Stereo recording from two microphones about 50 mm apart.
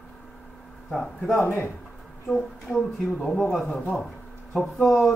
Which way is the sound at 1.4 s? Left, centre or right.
Left.